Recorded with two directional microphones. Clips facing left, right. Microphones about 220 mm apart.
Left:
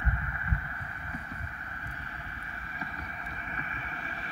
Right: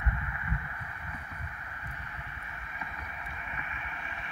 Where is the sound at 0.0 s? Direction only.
35° left (ahead or behind).